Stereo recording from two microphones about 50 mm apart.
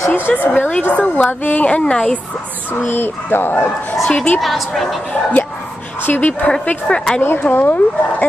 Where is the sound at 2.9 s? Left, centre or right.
Left.